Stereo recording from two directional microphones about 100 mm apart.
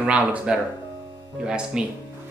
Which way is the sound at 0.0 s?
10° right (ahead or behind).